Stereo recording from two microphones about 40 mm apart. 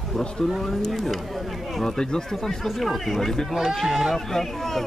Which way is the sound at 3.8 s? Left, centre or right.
Centre.